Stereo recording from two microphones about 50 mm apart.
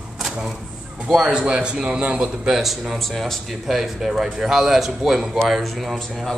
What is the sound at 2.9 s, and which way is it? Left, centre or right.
A man's voice, centre.